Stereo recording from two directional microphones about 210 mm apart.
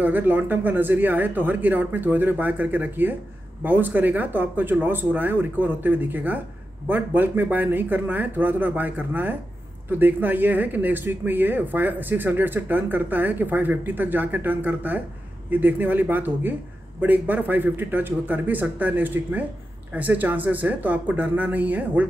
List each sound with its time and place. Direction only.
0.0 s speech: 10° right (ahead or behind)